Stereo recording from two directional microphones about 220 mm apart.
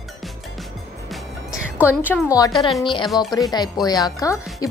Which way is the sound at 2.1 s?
15° left (ahead or behind).